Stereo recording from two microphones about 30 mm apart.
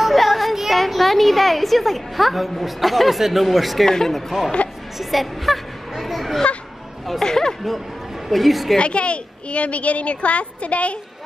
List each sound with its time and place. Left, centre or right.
0.0 s child singing: centre
0.7 s a woman's voice: centre
4.9 s a sound: centre
7.2 s speech: left
8.3 s a woman's voice: centre
8.7 s speech: left